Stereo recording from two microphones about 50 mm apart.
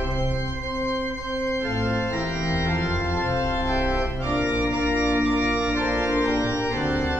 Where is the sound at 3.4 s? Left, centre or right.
Left.